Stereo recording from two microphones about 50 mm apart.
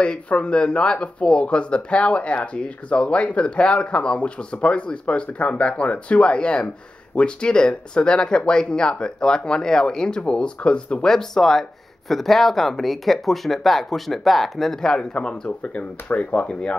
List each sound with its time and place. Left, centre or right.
0.0 s speech: left
15.6 s speech: left